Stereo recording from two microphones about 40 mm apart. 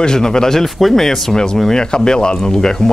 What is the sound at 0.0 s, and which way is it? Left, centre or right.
Speech, centre.